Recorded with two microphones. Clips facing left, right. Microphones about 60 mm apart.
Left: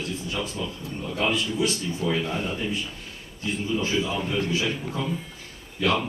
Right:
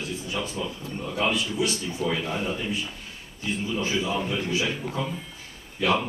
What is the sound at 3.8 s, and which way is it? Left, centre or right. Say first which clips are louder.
Speech: right 1 dB; centre.